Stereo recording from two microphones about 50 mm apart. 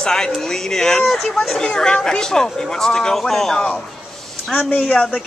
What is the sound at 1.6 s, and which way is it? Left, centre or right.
Speech, centre.